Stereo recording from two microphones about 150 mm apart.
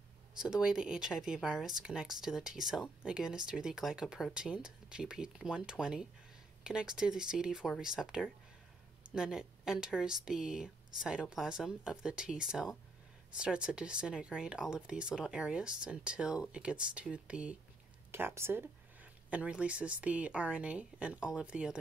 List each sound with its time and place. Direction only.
0.4 s speech: 5° right (ahead or behind)